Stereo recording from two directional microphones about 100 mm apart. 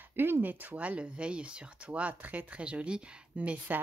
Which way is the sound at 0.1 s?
20° right (ahead or behind).